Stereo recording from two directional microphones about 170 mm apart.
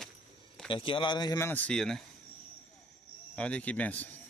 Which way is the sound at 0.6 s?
30° left (ahead or behind).